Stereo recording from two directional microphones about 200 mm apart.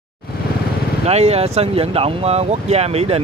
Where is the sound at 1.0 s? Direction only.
30° right (ahead or behind).